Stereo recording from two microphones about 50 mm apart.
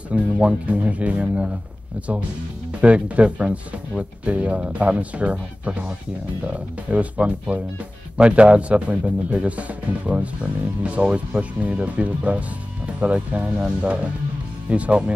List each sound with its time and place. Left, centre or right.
0.1 s speech: right
2.8 s speech: right